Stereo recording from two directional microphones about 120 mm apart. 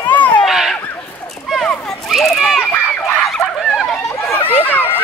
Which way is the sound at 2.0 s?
Centre (ahead or behind).